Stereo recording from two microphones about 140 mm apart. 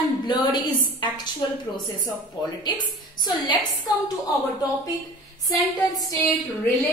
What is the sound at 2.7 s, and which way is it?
A woman's voice, 35° left (ahead or behind).